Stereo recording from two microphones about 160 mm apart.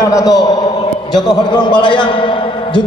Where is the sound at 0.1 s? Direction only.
25° left (ahead or behind).